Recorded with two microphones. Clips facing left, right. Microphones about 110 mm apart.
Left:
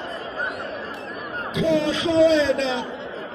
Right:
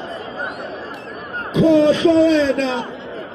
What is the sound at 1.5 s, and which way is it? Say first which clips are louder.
Speech: right 8 dB; 30° right (ahead or behind).